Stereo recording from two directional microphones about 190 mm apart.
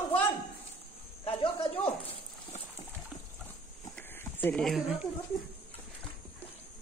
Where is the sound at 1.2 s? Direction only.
30° left (ahead or behind).